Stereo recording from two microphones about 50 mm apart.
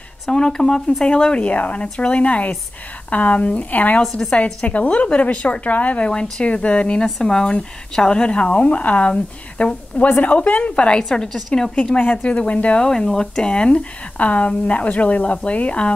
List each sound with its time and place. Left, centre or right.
0.3 s speech: centre; by 4.0 s left
4.2 s a woman's voice: centre
7.1 s a woman's voice: centre
11.1 s a woman's voice: centre; by 12.8 s left
12.8 s speech: centre